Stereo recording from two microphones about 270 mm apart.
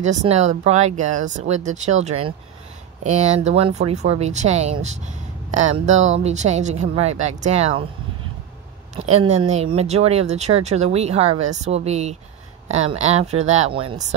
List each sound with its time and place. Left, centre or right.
0.0 s speech: right
8.9 s speech: right